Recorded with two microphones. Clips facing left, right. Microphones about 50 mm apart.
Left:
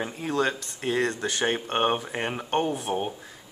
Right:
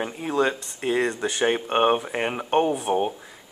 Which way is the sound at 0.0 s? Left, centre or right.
Centre.